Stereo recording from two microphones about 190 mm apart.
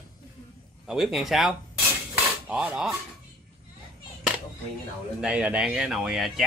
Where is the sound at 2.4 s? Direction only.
5° right (ahead or behind).